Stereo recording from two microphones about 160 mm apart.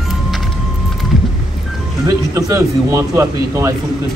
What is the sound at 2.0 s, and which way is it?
Speech, 20° right (ahead or behind).